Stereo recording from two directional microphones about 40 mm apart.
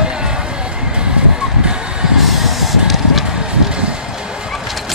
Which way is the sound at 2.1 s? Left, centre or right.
Centre.